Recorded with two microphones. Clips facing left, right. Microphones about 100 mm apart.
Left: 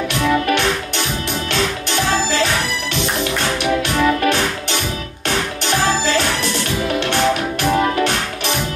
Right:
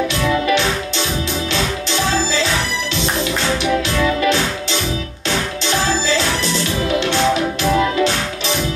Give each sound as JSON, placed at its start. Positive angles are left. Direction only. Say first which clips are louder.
{"t": 0.5, "sound": "music", "louder": "right 1 dB", "side_deg": 60}
{"t": 4.2, "sound": "music", "louder": "even", "side_deg": 55}